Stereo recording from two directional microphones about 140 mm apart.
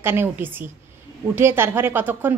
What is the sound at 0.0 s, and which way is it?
A woman's voice, 15° right (ahead or behind).